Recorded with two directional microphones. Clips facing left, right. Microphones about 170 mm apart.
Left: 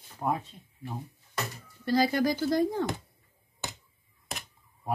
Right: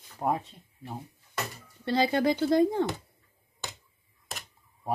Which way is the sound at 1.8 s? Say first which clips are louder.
Even; 25° right (ahead or behind).